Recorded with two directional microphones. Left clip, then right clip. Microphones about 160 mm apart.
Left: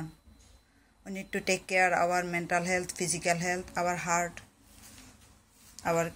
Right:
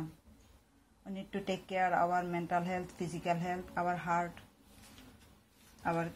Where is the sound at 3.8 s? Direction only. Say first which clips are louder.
Left 4 dB; 40° left (ahead or behind).